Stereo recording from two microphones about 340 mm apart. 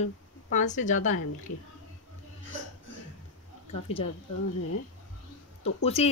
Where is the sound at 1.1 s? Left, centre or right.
Left.